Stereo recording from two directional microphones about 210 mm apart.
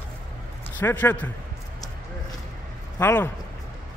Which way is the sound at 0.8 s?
10° left (ahead or behind).